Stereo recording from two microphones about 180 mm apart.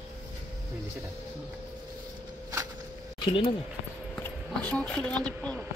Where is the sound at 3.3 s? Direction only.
30° left (ahead or behind).